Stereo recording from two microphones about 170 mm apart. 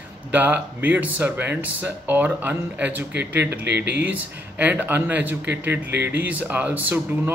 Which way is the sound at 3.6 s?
80° right.